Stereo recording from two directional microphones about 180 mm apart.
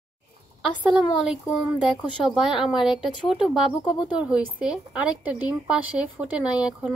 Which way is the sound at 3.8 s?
25° left (ahead or behind).